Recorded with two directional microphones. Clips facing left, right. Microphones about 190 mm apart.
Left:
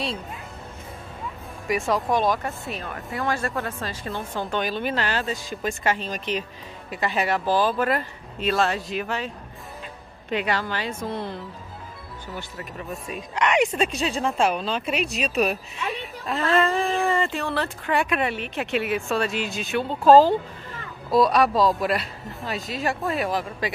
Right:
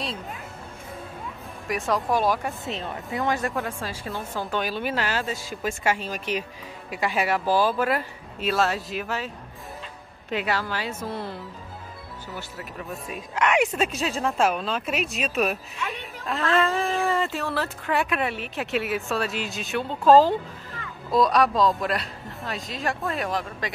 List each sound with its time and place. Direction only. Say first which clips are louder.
1.7 s speech: left 2 dB; centre (ahead or behind)
2.6 s speech: right 1 dB; 25° right (ahead or behind); by 9.3 s 5° right (ahead or behind)
10.3 s speech: left 1 dB; 5° right (ahead or behind)
12.4 s speech: left 1 dB; centre (ahead or behind)